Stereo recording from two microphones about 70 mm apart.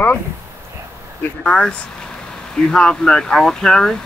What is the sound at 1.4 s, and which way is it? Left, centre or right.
Speech, centre.